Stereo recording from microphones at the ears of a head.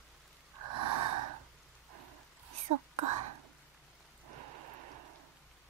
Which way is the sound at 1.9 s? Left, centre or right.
Right.